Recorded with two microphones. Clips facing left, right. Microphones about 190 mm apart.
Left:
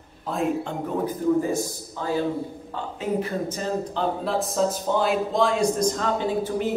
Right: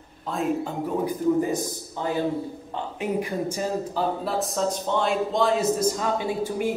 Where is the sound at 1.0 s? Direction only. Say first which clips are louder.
Left 1 dB; 20° right (ahead or behind).